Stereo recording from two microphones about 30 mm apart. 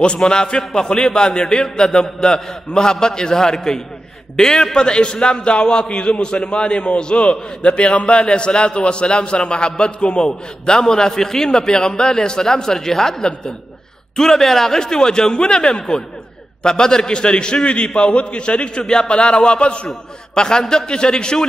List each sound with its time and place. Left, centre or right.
0.0 s a man's voice: left
0.3 s a man's voice: left
14.1 s a man's voice: centre
14.8 s a man's voice: left
20.3 s a man's voice: left